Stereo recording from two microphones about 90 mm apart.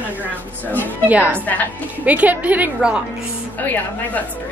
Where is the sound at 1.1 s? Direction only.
15° right (ahead or behind).